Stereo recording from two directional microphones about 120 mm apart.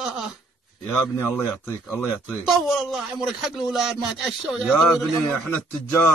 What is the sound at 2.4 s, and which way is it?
Speech, 5° right (ahead or behind).